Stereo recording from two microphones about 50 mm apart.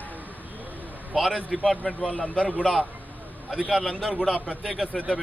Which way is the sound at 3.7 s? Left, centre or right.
Centre.